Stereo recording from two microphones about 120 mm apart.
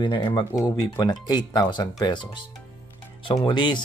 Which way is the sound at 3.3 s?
40° left (ahead or behind).